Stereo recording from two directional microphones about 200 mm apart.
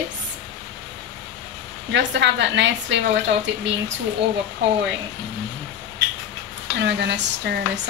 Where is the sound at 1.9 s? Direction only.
60° right (ahead or behind).